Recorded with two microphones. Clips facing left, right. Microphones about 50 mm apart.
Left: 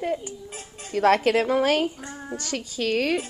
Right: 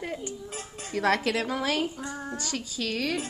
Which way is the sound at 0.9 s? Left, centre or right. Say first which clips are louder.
Left 6 dB; left.